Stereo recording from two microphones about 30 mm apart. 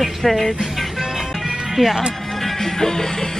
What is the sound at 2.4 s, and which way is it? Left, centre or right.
Music, centre.